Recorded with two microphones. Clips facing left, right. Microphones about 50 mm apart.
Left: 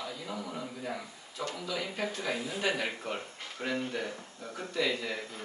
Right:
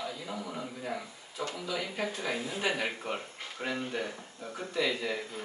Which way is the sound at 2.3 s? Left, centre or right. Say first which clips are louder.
Even; right.